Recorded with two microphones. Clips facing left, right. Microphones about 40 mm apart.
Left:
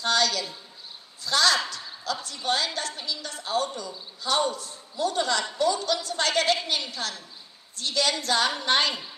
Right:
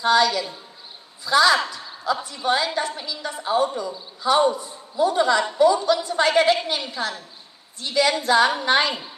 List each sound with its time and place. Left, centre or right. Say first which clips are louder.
0.0 s a man's voice: right 6 dB; centre